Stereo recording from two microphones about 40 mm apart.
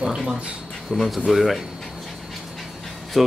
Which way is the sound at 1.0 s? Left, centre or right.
Centre.